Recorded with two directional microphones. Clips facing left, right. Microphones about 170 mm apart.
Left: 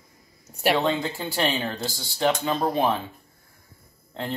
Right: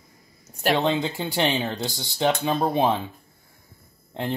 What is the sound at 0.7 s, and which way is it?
Speech, 20° right (ahead or behind).